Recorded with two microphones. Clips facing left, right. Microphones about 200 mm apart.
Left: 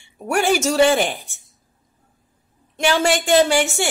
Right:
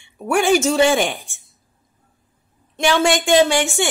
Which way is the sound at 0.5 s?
5° left (ahead or behind).